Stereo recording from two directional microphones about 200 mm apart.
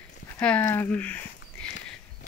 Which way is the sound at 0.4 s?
5° left (ahead or behind).